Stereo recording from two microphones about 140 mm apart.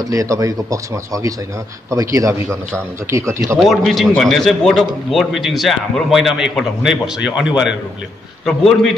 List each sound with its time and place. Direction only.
0.0 s speech: 25° right (ahead or behind)
3.5 s a man's voice: centre (ahead or behind)